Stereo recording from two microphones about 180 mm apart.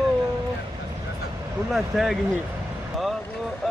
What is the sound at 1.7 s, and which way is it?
Speech, centre (ahead or behind).